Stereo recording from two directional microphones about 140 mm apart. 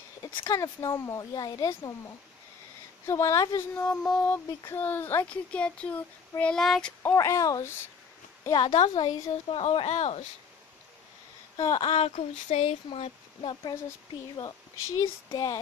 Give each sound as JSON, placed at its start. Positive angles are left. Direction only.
{"t": 0.2, "sound": "speech", "side_deg": 30}
{"t": 3.1, "sound": "speech", "side_deg": 20}
{"t": 3.8, "sound": "speech", "side_deg": 5}
{"t": 7.0, "sound": "speech", "side_deg": 20}
{"t": 8.7, "sound": "speech", "side_deg": 50}
{"t": 11.5, "sound": "speech", "side_deg": 30}
{"t": 11.9, "sound": "speech", "side_deg": 50}